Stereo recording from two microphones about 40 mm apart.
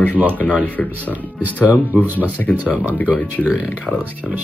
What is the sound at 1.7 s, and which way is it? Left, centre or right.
Speech, right.